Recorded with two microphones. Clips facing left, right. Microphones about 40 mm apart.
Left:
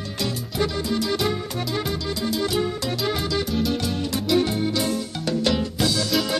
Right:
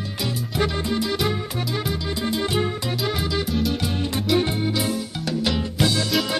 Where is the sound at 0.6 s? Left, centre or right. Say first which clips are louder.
Right 1 dB; right.